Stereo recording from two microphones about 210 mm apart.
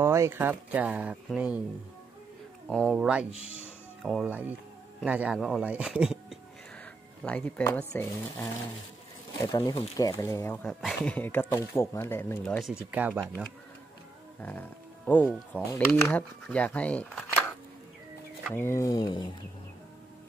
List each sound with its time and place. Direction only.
0.0 s speech: 10° right (ahead or behind)
2.7 s speech: centre (ahead or behind)
7.2 s speech: 5° left (ahead or behind)
15.0 s speech: 10° left (ahead or behind)
18.5 s speech: 10° left (ahead or behind)